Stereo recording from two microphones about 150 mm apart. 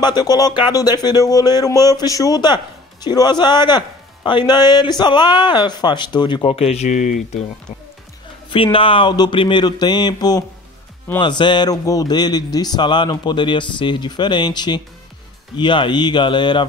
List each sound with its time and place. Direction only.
0.0 s speech: 25° left (ahead or behind); by 7.4 s 55° left (ahead or behind)
8.7 s speech: 35° left (ahead or behind)